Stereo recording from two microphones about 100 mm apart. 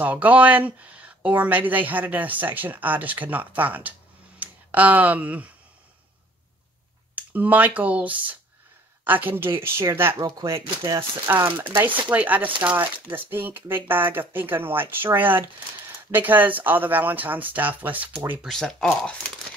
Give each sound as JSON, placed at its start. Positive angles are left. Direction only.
{"t": 0.0, "sound": "speech", "side_deg": -15}
{"t": 7.2, "sound": "speech", "side_deg": -15}
{"t": 18.5, "sound": "speech", "side_deg": 5}